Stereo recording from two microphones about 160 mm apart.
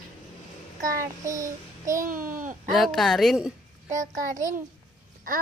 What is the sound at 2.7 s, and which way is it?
Speech, centre (ahead or behind).